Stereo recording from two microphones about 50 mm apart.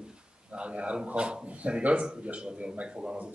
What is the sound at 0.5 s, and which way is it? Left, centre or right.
Speech, right.